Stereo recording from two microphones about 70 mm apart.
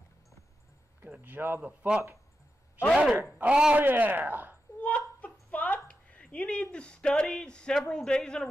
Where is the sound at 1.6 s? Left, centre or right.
Centre.